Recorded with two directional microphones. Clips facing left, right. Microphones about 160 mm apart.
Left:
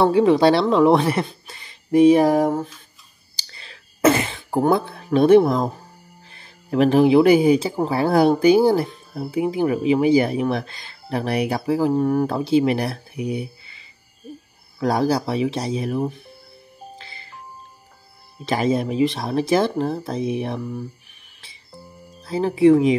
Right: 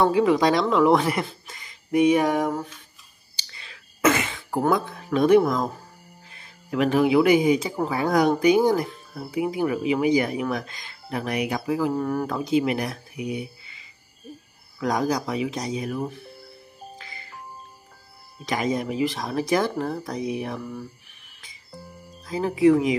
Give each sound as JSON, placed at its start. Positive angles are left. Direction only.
{"t": 0.0, "sound": "speech", "side_deg": 30}
{"t": 3.3, "sound": "a sound", "side_deg": 35}
{"t": 6.3, "sound": "speech", "side_deg": 35}
{"t": 17.0, "sound": "music", "side_deg": 30}
{"t": 18.4, "sound": "speech", "side_deg": 30}
{"t": 22.2, "sound": "speech", "side_deg": 30}